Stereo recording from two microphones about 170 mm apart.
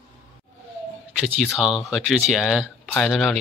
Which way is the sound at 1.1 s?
Centre (ahead or behind).